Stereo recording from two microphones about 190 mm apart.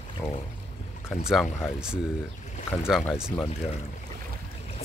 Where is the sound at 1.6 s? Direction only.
Centre (ahead or behind).